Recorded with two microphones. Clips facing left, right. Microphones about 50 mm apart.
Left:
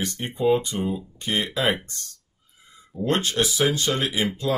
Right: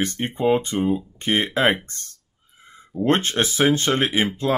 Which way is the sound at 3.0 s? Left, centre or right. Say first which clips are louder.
Right 3 dB; right.